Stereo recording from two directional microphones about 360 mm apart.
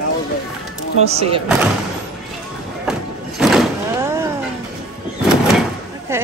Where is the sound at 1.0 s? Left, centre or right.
Centre.